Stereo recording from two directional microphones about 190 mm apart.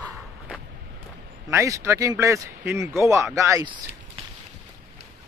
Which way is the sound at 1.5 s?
15° right (ahead or behind).